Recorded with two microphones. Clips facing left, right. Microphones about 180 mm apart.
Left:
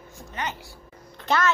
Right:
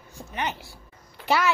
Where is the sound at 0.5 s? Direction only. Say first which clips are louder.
Left 1 dB; 15° left (ahead or behind).